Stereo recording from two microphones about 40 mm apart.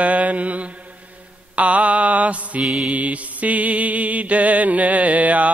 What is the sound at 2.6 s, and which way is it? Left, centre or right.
Music, centre.